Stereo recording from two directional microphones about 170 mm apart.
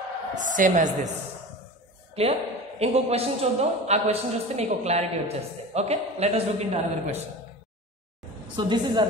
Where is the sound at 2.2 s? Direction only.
35° right (ahead or behind).